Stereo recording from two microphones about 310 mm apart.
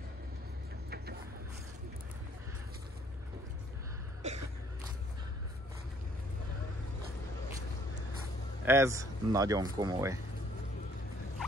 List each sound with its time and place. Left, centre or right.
0.8 s vehicle: right
4.2 s a sound: right
8.6 s speech: centre